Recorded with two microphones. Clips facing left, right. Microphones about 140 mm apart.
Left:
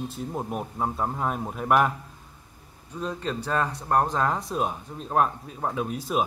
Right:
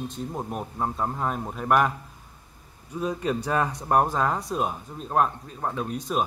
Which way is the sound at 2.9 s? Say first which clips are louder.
Right 3 dB; 10° right (ahead or behind).